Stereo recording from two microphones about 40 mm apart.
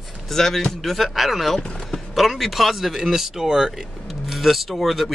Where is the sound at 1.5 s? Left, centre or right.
Centre.